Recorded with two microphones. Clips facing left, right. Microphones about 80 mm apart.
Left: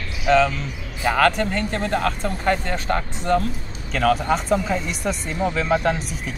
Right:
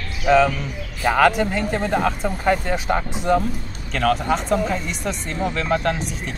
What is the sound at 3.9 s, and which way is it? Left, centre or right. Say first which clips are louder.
Speech: even; centre.